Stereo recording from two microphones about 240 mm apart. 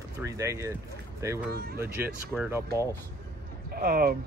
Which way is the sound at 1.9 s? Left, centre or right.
Centre.